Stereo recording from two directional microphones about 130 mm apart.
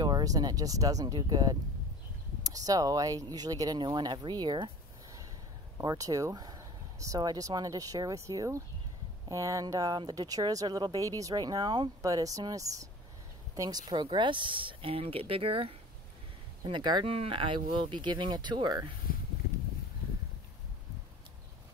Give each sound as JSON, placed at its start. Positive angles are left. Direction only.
{"t": 0.0, "sound": "speech", "side_deg": -30}
{"t": 5.8, "sound": "speech", "side_deg": -25}